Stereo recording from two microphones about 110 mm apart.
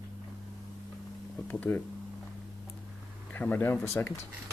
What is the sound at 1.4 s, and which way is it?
Speech, 15° left (ahead or behind).